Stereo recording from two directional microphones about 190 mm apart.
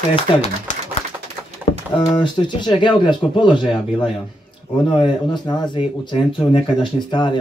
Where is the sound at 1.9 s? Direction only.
25° left (ahead or behind).